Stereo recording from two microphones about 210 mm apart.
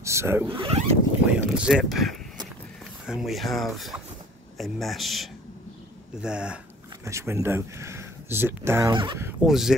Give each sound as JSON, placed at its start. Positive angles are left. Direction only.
{"t": 0.0, "sound": "speech", "side_deg": -15}
{"t": 0.6, "sound": "speech", "side_deg": -25}
{"t": 1.3, "sound": "speech", "side_deg": -5}
{"t": 9.5, "sound": "speech", "side_deg": 0}